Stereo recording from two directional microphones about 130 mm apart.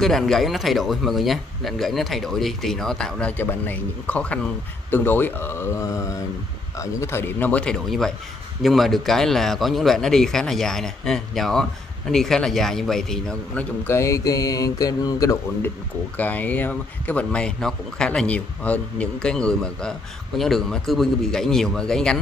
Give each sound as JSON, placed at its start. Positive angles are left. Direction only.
{"t": 0.0, "sound": "speech", "side_deg": 0}
{"t": 13.8, "sound": "speech", "side_deg": 20}
{"t": 16.2, "sound": "speech", "side_deg": 15}